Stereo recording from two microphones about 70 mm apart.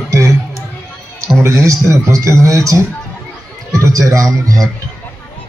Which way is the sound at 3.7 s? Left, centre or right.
Right.